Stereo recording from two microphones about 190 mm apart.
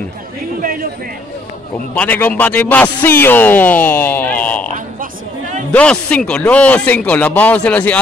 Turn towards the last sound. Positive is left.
turn(degrees=5)  # may be behind; listen again after turning